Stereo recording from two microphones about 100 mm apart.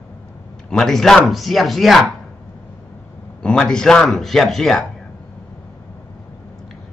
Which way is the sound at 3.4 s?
10° left (ahead or behind).